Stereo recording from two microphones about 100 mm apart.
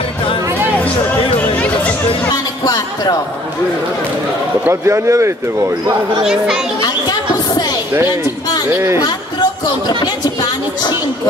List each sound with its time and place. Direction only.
2.3 s speech: 40° left (ahead or behind)
4.6 s speech: 30° right (ahead or behind)
6.2 s a child's voice: 5° right (ahead or behind)
6.8 s chatter: 40° left (ahead or behind)
8.6 s speech: 25° right (ahead or behind)
9.0 s a sound: 40° left (ahead or behind)